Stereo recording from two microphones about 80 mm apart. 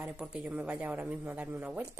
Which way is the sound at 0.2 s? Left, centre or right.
Centre.